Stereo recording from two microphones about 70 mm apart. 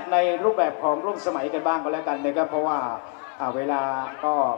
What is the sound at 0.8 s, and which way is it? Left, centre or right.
A man's voice, centre.